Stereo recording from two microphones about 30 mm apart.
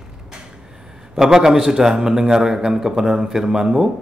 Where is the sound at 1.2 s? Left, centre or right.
Centre.